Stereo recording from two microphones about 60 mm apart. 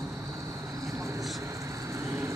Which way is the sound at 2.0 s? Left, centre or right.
Right.